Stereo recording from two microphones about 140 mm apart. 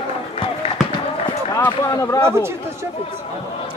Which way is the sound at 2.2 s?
20° right (ahead or behind).